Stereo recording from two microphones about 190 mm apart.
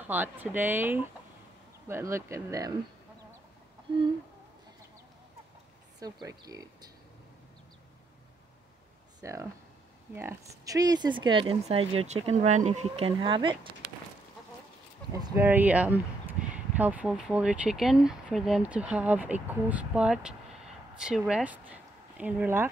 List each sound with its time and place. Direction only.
0.0 s speech: 10° right (ahead or behind)
6.2 s speech: 20° right (ahead or behind)
9.2 s speech: 15° right (ahead or behind)
15.2 s speech: 10° right (ahead or behind)